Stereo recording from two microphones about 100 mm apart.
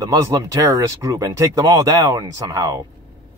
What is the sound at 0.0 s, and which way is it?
Speech, 40° right (ahead or behind).